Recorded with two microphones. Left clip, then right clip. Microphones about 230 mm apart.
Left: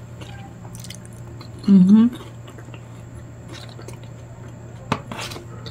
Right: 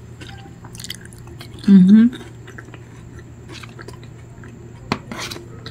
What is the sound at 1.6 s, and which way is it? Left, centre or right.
Speech, centre.